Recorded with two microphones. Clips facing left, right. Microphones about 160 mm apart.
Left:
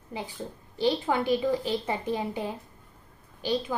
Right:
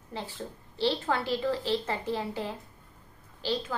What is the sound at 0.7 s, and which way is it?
A child's voice, 15° left (ahead or behind).